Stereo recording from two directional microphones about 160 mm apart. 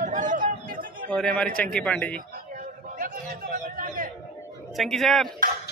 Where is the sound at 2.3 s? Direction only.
55° right (ahead or behind).